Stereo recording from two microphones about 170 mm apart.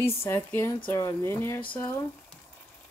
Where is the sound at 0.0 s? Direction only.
15° left (ahead or behind).